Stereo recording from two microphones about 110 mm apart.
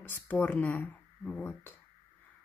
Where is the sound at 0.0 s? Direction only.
15° left (ahead or behind).